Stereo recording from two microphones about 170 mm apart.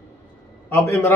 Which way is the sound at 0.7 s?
15° left (ahead or behind).